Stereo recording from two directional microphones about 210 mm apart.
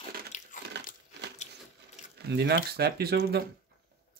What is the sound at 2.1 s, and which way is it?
Speech, 55° right (ahead or behind).